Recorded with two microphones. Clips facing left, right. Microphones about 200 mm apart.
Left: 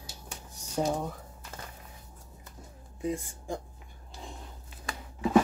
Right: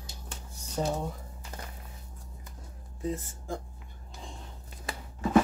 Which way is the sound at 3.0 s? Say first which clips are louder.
Left 1 dB; 15° left (ahead or behind).